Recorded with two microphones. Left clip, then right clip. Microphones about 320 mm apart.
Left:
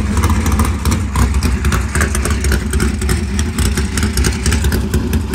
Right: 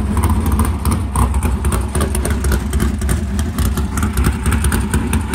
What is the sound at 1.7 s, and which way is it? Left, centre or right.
Vehicle, right.